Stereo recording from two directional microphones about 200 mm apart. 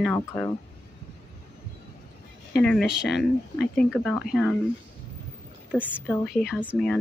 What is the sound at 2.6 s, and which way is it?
Speech, 5° left (ahead or behind).